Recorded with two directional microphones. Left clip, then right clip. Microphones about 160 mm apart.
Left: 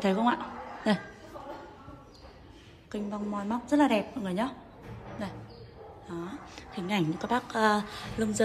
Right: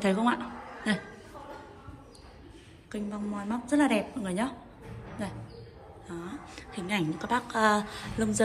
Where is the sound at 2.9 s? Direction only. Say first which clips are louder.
Left 2 dB; 20° left (ahead or behind).